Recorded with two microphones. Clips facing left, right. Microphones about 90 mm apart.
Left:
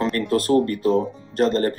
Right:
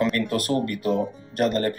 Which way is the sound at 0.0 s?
35° left (ahead or behind).